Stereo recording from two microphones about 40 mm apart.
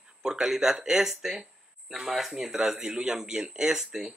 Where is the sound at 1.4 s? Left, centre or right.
Centre.